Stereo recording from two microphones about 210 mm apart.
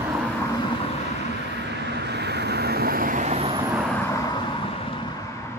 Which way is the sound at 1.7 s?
55° right (ahead or behind).